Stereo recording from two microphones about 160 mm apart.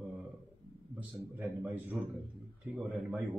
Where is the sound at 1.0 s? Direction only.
10° right (ahead or behind).